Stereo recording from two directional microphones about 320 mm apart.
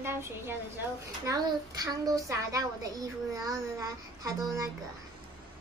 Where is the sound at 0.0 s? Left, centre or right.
Centre.